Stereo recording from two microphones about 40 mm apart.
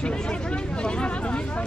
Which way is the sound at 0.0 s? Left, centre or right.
Left.